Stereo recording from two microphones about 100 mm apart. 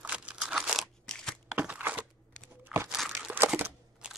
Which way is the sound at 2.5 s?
25° right (ahead or behind).